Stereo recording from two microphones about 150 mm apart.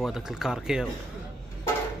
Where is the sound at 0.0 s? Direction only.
Centre (ahead or behind).